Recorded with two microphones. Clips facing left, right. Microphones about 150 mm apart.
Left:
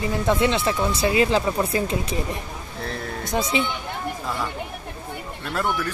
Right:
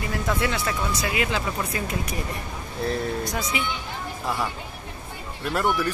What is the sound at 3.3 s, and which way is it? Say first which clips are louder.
Speech: left 5 dB; 25° left (ahead or behind).